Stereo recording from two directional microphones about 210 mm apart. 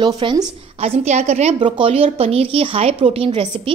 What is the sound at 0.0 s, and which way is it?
A woman's voice, 20° right (ahead or behind).